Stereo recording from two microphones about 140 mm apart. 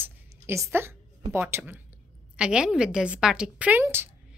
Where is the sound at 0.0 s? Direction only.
20° right (ahead or behind).